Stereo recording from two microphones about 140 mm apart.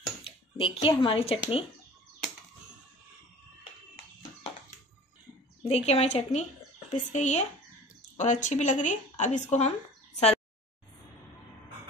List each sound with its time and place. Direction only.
0.2 s speech: 40° left (ahead or behind)
5.7 s a woman's voice: 45° left (ahead or behind)